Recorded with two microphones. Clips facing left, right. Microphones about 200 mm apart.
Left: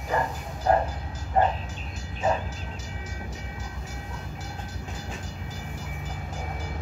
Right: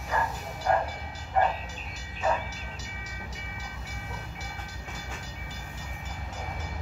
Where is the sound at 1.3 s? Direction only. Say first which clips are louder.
Left 3 dB; 30° left (ahead or behind).